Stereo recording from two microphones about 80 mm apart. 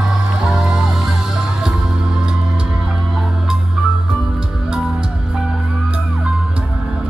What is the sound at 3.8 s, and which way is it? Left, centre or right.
Music, centre.